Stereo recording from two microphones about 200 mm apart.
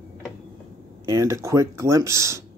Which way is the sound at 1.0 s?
15° right (ahead or behind).